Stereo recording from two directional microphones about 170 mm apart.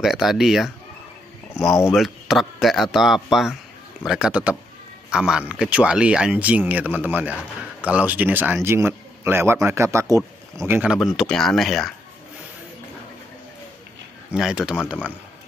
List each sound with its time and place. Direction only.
0.0 s speech: centre (ahead or behind)
1.5 s speech: 15° left (ahead or behind)
2.0 s a man's voice: centre (ahead or behind); by 10.8 s 20° right (ahead or behind)
10.8 s speech: 5° right (ahead or behind)
14.3 s speech: 5° right (ahead or behind)